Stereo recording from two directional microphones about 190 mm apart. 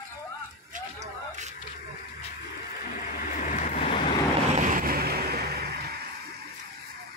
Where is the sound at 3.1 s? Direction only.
40° left (ahead or behind).